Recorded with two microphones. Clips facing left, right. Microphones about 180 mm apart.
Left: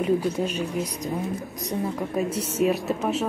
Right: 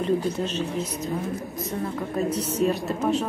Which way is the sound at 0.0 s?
10° left (ahead or behind).